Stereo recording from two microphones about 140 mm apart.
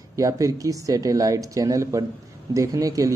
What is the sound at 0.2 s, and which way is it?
A man's voice, 25° right (ahead or behind).